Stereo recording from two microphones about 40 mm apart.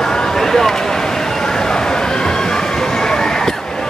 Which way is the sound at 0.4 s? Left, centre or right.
Centre.